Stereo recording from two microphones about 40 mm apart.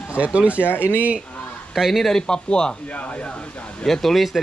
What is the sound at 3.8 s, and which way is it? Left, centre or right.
Speech, centre.